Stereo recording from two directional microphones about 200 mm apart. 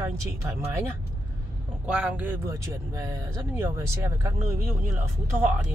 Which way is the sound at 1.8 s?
5° right (ahead or behind).